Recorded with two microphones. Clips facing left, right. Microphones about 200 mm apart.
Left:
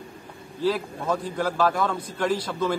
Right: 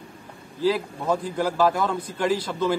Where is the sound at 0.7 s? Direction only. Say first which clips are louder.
Right 2 dB; 10° right (ahead or behind).